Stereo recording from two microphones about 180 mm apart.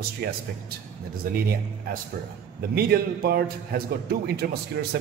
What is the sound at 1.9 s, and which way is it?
A man's voice, 55° right (ahead or behind).